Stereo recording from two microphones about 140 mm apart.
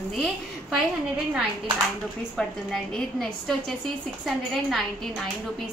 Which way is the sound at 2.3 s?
5° left (ahead or behind).